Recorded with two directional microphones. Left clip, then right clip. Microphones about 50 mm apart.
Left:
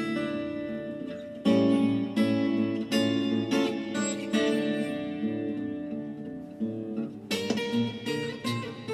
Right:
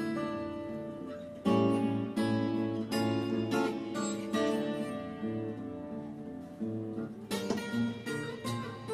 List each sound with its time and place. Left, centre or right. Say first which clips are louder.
1.4 s music: left 5 dB; left
7.2 s music: left 6 dB; left